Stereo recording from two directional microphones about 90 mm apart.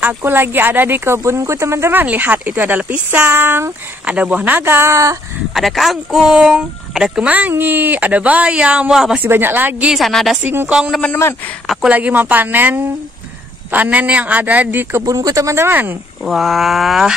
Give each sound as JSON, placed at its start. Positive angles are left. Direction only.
{"t": 0.0, "sound": "speech", "side_deg": -25}
{"t": 4.0, "sound": "speech", "side_deg": -15}
{"t": 5.5, "sound": "speech", "side_deg": 0}
{"t": 9.1, "sound": "speech", "side_deg": -20}
{"t": 9.8, "sound": "speech", "side_deg": 0}
{"t": 10.4, "sound": "speech", "side_deg": -25}
{"t": 11.6, "sound": "speech", "side_deg": 0}
{"t": 11.9, "sound": "speech", "side_deg": -20}
{"t": 15.0, "sound": "speech", "side_deg": -40}
{"t": 16.3, "sound": "speech", "side_deg": 0}